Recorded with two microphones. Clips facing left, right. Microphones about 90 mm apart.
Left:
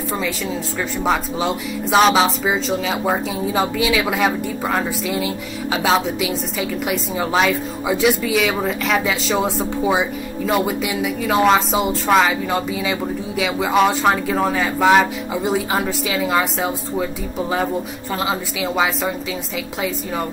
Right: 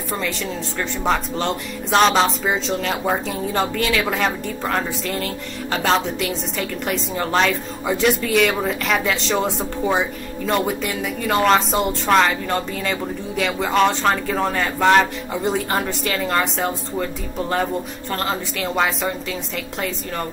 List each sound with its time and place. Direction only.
1.0 s speech: 5° left (ahead or behind)